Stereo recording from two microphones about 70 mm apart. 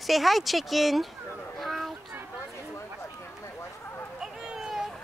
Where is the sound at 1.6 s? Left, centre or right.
Centre.